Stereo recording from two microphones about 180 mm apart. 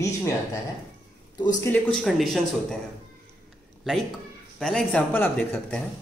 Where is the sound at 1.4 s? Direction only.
20° left (ahead or behind).